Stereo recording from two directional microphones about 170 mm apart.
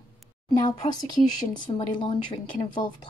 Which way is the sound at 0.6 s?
25° left (ahead or behind).